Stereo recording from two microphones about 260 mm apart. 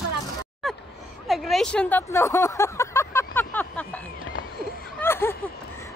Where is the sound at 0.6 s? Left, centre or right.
Centre.